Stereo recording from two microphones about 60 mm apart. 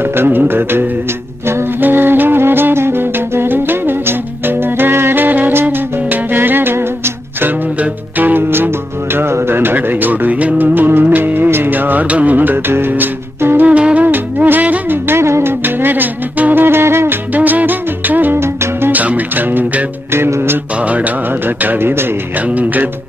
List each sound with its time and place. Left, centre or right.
0.0 s music: right
7.8 s music: right
13.7 s music: right
15.6 s music: right
16.6 s music: right
17.3 s music: right
18.4 s music: right
18.9 s music: right
20.8 s mantra: right
21.6 s a sound: right
22.5 s music: right